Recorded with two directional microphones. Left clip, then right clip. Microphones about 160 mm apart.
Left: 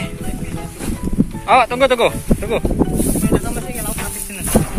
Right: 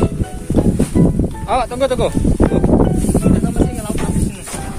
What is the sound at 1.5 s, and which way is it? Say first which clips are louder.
Speech: left 4 dB; 5° right (ahead or behind).